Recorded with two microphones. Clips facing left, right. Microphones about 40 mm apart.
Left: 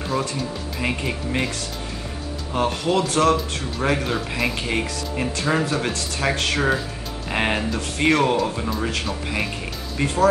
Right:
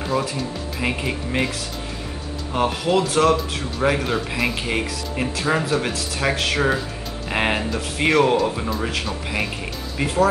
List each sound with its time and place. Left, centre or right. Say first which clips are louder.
0.0 s music: right 2 dB; centre
0.7 s speech: right 1 dB; centre
2.5 s speech: right 1 dB; centre